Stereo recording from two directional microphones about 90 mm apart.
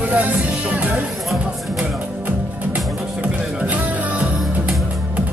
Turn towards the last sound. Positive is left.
turn(degrees=-15)  # may be behind; listen again after turning